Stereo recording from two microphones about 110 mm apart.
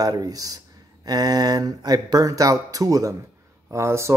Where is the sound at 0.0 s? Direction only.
35° right (ahead or behind).